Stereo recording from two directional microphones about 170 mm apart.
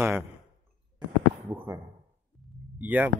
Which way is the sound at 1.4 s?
15° right (ahead or behind).